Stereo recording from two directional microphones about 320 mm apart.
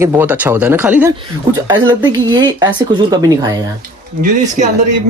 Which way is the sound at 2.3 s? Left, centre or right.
Centre.